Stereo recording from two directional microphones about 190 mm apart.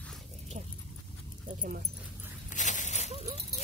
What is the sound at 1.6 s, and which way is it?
Dog, 50° right (ahead or behind).